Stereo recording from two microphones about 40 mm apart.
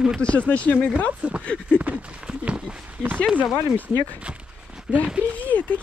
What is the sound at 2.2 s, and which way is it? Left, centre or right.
Speech, right.